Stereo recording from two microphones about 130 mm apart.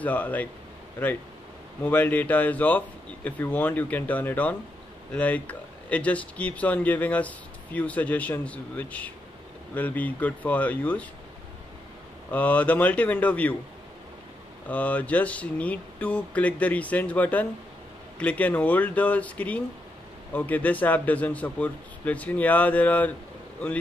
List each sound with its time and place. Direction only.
0.0 s speech: 10° left (ahead or behind)
1.9 s speech: 15° left (ahead or behind)
12.3 s speech: 10° left (ahead or behind)
14.7 s speech: 10° left (ahead or behind)